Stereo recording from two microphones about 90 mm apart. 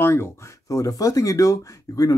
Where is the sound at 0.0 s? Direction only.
30° left (ahead or behind).